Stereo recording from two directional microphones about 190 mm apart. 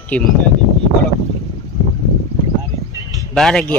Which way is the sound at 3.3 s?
5° left (ahead or behind).